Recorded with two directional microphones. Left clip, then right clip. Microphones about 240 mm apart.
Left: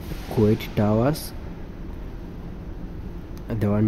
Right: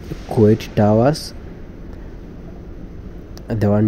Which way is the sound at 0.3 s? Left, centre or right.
Centre.